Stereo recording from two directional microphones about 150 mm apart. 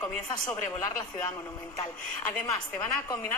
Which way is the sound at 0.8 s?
25° left (ahead or behind).